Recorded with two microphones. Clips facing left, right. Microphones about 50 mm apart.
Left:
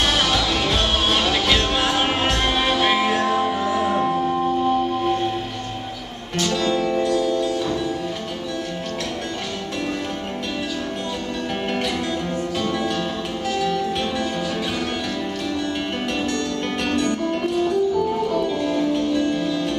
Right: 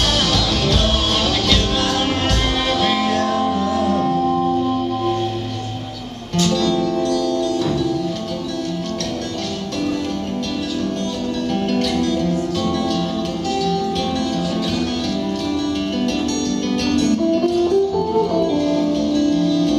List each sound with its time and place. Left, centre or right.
1.2 s music: centre
6.4 s music: centre
11.7 s music: centre
16.8 s music: centre